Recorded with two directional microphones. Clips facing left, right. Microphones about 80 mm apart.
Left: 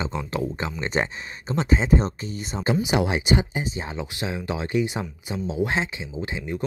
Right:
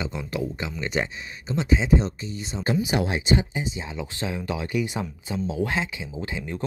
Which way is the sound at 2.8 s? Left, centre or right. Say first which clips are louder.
Left 2 dB; left.